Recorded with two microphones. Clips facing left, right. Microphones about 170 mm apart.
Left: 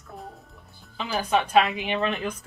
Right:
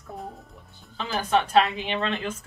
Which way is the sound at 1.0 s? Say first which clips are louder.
Even; 10° left (ahead or behind).